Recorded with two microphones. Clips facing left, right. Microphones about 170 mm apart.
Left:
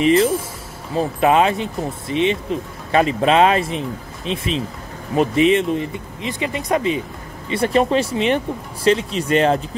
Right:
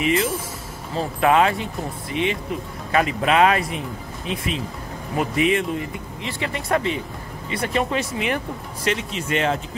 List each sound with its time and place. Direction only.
0.0 s speech: 35° left (ahead or behind)
0.9 s speech: 20° left (ahead or behind)
7.4 s speech: 30° left (ahead or behind)